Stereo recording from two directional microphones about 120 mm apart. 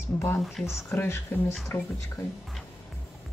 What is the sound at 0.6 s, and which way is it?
Music, 20° left (ahead or behind).